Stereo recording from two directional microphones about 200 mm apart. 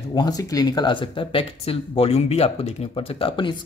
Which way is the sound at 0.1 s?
20° left (ahead or behind).